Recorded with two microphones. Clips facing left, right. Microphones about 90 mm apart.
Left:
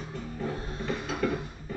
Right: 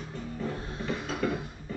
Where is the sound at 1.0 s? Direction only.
50° left (ahead or behind).